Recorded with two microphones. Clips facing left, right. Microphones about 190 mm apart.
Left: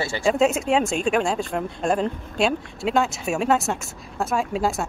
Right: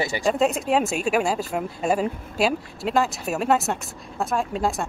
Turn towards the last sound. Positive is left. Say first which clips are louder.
# left 1 dB
turn(degrees=0)  # may be behind; listen again after turning